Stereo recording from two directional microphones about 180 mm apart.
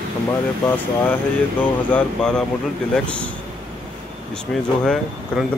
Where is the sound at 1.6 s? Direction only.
10° left (ahead or behind).